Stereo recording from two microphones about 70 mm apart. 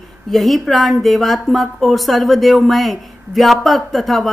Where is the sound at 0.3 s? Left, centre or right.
Centre.